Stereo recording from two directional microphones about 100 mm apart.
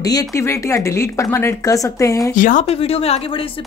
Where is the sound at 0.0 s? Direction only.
35° left (ahead or behind).